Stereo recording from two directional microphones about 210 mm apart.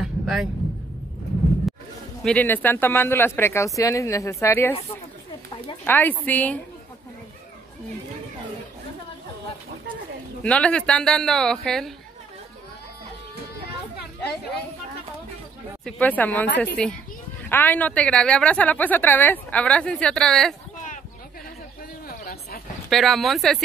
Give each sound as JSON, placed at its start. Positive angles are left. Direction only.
{"t": 0.0, "sound": "a sound", "side_deg": 0}
{"t": 2.2, "sound": "speech", "side_deg": 10}
{"t": 5.9, "sound": "speech", "side_deg": 10}
{"t": 10.4, "sound": "a woman's voice", "side_deg": 5}
{"t": 15.8, "sound": "a woman's voice", "side_deg": 5}
{"t": 22.0, "sound": "a sound", "side_deg": 45}
{"t": 22.8, "sound": "a woman's voice", "side_deg": 0}